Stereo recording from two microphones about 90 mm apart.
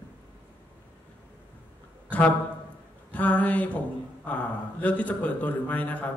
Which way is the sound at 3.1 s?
15° left (ahead or behind).